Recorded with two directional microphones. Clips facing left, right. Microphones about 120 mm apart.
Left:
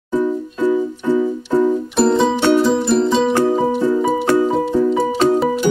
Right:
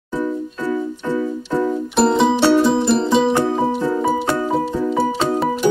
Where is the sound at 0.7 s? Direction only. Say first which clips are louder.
Left 5 dB; 15° left (ahead or behind).